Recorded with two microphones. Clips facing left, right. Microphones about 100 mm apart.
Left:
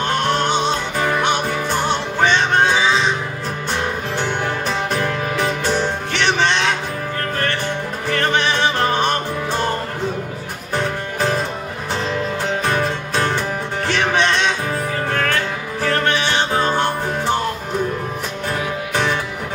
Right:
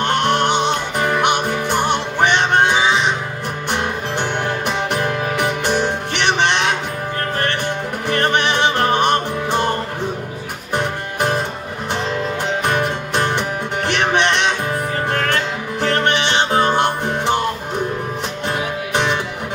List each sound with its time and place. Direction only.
0.3 s music: 20° right (ahead or behind)
10.7 s music: 20° right (ahead or behind)
12.6 s music: 20° right (ahead or behind)